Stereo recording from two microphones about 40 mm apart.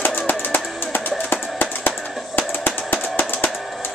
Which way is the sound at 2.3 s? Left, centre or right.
Left.